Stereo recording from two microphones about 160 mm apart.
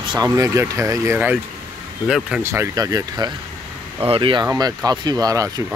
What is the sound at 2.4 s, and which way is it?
Speech, 15° right (ahead or behind).